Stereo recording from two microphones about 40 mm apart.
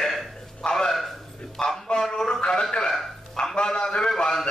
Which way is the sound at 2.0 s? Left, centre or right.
Centre.